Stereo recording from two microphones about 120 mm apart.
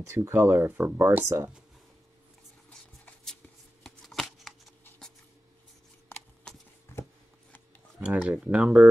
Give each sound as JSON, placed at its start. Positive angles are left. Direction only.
{"t": 0.1, "sound": "speech", "side_deg": -25}
{"t": 3.8, "sound": "shuffling cards", "side_deg": 0}
{"t": 8.0, "sound": "speech", "side_deg": -10}